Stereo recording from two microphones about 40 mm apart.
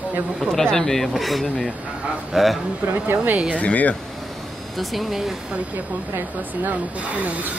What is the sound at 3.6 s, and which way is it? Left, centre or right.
Speech, left.